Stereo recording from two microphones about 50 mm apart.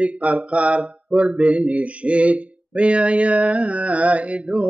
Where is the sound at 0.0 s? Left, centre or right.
Right.